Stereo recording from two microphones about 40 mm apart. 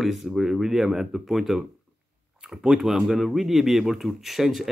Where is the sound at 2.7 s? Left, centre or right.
Centre.